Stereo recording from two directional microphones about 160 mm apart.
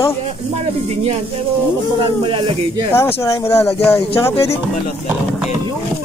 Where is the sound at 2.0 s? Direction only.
35° right (ahead or behind).